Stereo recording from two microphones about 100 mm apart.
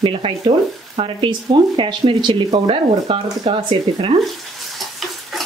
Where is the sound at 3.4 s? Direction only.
85° right.